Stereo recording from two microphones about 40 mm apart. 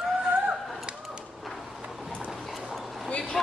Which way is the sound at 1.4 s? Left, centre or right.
Centre.